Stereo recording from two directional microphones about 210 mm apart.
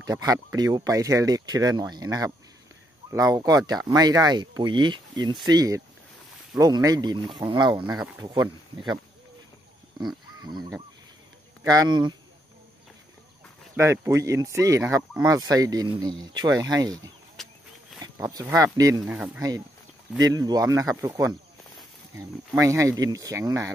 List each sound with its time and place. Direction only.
0.0 s speech: 15° right (ahead or behind)
10.4 s a sound: 20° right (ahead or behind)
11.6 s speech: 15° right (ahead or behind)
13.7 s speech: 10° right (ahead or behind)
17.4 s a sound: centre (ahead or behind)
18.0 s speech: 15° right (ahead or behind)
19.1 s speech: 5° right (ahead or behind)
20.2 s speech: 20° right (ahead or behind)
21.7 s a sound: centre (ahead or behind)
22.6 s speech: 15° right (ahead or behind)